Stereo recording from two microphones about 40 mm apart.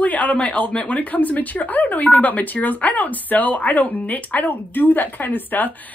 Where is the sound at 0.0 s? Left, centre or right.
Left.